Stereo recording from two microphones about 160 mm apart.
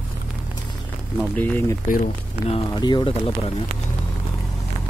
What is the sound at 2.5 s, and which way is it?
Speech, 25° left (ahead or behind).